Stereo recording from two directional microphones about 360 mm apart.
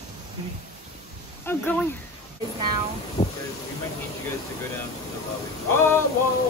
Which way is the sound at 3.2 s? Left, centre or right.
Centre.